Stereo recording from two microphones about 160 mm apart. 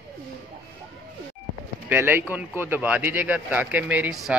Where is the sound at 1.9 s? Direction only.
15° right (ahead or behind).